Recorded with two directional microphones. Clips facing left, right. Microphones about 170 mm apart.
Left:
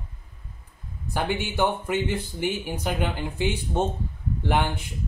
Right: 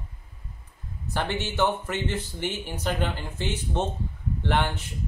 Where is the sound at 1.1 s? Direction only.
10° left (ahead or behind).